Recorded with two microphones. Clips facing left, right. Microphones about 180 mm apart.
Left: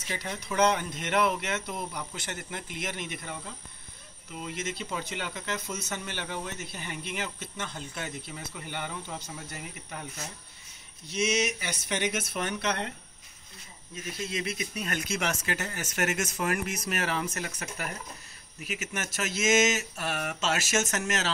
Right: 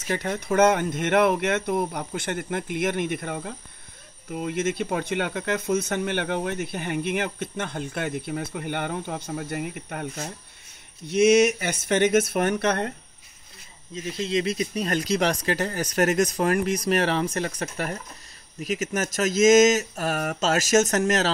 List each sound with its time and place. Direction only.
0.0 s speech: 55° right (ahead or behind)
13.9 s speech: 25° right (ahead or behind)